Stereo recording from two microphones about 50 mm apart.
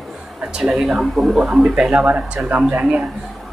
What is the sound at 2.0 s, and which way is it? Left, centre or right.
Speech, right.